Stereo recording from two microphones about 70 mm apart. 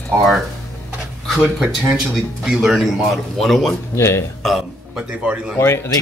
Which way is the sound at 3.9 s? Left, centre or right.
Left.